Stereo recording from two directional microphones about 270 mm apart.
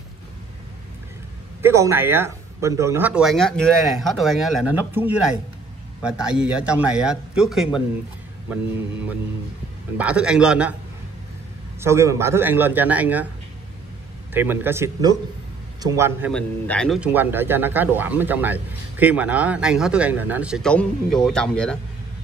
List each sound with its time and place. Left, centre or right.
1.6 s a man's voice: centre
11.8 s speech: centre
14.3 s speech: centre
16.3 s a man's voice: centre